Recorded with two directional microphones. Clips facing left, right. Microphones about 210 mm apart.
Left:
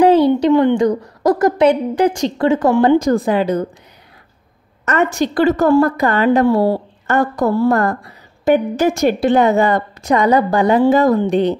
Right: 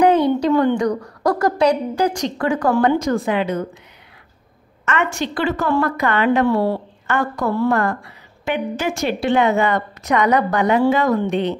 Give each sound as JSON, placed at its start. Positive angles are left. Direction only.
{"t": 0.4, "sound": "a woman's voice", "side_deg": 20}
{"t": 4.8, "sound": "a woman's voice", "side_deg": 40}